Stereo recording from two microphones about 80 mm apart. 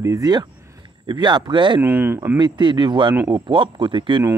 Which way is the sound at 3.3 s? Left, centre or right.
Right.